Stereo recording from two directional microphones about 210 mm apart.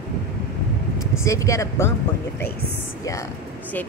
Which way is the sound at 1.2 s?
15° left (ahead or behind).